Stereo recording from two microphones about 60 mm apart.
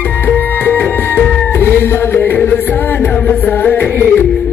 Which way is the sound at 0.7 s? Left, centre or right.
Left.